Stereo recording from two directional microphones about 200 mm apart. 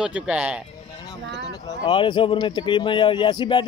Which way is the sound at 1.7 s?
25° left (ahead or behind).